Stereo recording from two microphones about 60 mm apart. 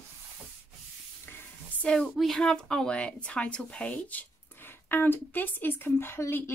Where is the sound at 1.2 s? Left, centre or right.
Left.